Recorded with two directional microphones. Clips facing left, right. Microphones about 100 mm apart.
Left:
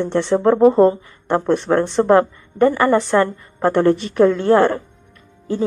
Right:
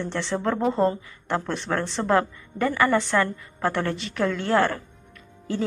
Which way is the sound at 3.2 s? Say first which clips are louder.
Left 7 dB; 30° left (ahead or behind).